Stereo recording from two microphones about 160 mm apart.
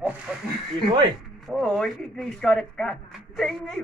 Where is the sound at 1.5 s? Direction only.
Centre (ahead or behind).